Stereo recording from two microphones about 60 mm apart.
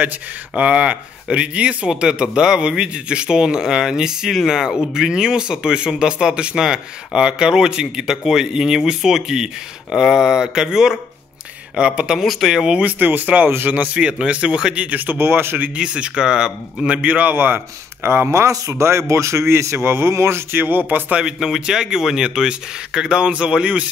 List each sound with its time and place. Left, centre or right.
0.6 s speech: right
13.7 s speech: centre
15.0 s speech: right
15.8 s speech: centre; by 18.3 s right
18.3 s a man's voice: right
20.5 s speech: right
21.2 s speech: centre